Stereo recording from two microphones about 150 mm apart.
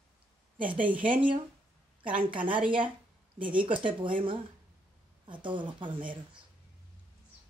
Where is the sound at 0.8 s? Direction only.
10° right (ahead or behind).